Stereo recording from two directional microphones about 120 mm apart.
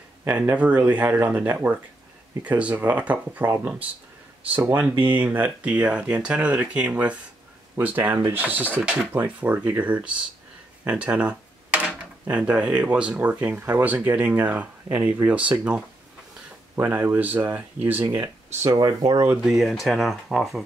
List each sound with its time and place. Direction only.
0.3 s speech: 10° right (ahead or behind)
18.7 s speech: 35° right (ahead or behind)
19.4 s speech: centre (ahead or behind)